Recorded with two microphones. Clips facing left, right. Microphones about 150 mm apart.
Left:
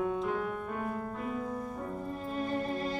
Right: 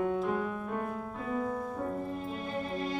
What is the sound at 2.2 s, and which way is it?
Music, centre (ahead or behind).